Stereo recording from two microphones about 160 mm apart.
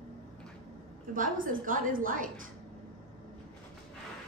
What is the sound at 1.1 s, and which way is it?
A woman's voice, 60° right (ahead or behind).